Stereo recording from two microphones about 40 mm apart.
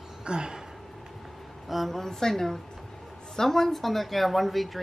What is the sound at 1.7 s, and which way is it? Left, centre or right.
A woman's voice, centre.